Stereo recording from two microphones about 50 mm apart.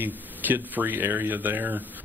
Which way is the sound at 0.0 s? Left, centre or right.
Right.